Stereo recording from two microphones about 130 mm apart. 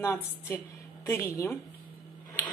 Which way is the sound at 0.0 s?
20° left (ahead or behind).